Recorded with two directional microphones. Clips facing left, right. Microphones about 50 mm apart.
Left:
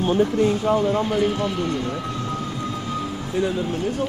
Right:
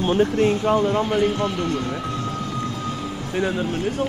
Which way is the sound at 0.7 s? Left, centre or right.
Right.